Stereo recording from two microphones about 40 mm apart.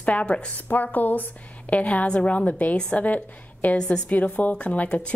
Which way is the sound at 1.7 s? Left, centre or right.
Left.